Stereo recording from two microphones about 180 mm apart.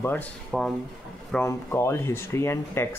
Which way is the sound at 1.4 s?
15° left (ahead or behind).